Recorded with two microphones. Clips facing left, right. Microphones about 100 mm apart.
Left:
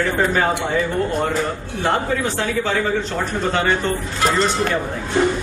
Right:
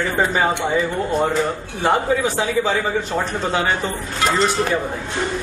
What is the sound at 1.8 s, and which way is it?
A man's voice, 15° right (ahead or behind).